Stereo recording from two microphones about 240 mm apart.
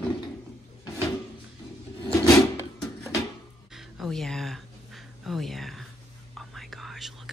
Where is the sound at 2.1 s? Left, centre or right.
Centre.